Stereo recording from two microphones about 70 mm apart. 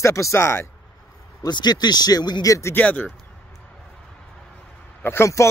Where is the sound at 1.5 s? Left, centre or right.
Left.